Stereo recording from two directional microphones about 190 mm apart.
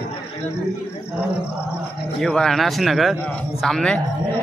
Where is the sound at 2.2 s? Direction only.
5° left (ahead or behind).